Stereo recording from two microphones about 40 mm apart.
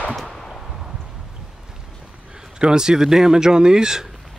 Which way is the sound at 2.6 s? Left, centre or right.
Centre.